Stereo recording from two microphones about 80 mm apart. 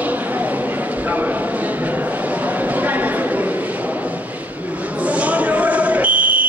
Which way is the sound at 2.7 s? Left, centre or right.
Right.